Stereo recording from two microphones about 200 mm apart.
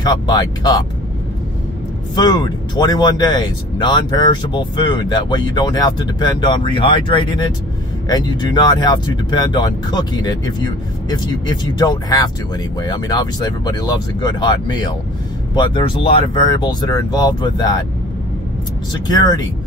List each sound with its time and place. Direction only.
0.0 s speech: 20° left (ahead or behind)
2.1 s speech: 20° left (ahead or behind)
19.0 s speech: 20° left (ahead or behind)